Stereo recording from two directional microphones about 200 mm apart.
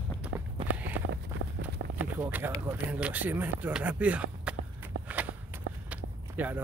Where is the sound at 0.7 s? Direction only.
10° right (ahead or behind).